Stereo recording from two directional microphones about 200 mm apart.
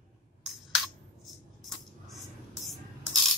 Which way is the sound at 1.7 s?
Centre (ahead or behind).